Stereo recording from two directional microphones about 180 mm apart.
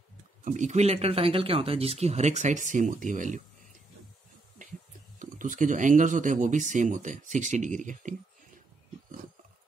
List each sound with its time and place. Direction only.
0.4 s speech: 45° right (ahead or behind)
5.2 s speech: 45° right (ahead or behind)